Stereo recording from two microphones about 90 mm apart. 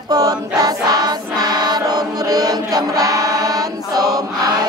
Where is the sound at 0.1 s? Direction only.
45° right (ahead or behind).